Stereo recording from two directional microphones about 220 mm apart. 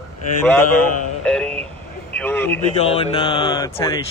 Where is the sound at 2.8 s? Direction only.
25° left (ahead or behind).